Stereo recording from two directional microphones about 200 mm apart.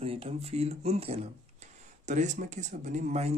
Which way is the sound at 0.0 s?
30° right (ahead or behind).